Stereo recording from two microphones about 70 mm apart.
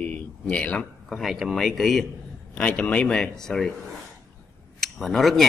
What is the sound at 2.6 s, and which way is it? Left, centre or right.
Speech, left.